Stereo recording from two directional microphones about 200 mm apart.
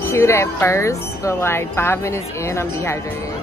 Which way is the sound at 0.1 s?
15° left (ahead or behind).